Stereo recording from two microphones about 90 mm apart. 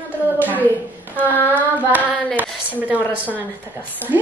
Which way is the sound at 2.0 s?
15° left (ahead or behind).